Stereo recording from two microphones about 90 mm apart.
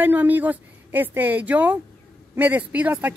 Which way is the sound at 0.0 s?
20° right (ahead or behind).